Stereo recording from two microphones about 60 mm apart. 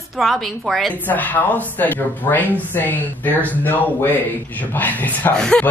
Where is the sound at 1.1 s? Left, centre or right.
Left.